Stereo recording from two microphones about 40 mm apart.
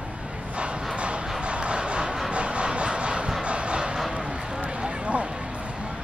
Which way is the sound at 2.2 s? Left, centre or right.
Right.